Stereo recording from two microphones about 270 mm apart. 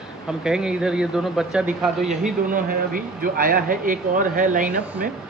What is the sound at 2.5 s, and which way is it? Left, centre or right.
Speech, right.